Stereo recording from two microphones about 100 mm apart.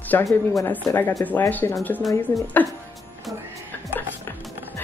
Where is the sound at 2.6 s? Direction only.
20° left (ahead or behind).